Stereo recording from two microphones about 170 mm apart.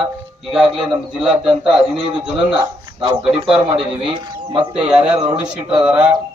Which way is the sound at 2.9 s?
30° right (ahead or behind).